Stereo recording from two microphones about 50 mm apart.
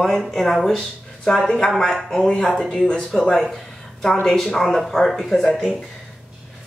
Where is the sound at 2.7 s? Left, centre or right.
Centre.